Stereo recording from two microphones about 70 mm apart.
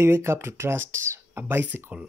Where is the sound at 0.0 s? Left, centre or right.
Right.